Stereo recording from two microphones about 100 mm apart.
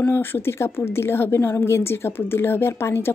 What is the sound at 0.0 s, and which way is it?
A woman's voice, 20° left (ahead or behind).